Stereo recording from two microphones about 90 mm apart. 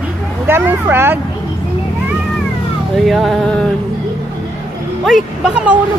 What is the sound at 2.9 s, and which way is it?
Speech, centre (ahead or behind).